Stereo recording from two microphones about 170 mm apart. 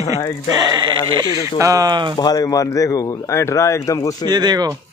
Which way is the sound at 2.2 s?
20° left (ahead or behind).